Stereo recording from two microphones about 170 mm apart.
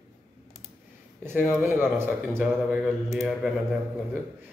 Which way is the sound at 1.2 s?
10° right (ahead or behind).